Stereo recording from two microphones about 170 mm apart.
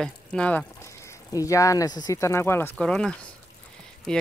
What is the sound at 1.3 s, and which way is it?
Speech, 20° left (ahead or behind).